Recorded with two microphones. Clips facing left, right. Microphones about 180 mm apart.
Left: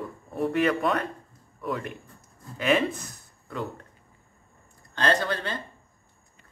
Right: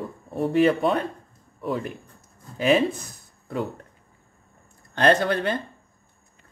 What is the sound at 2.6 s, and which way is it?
Speech, 35° right (ahead or behind).